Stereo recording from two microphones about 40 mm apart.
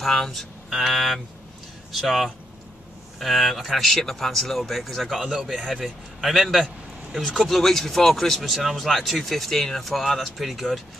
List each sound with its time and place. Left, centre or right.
0.0 s a man's voice: centre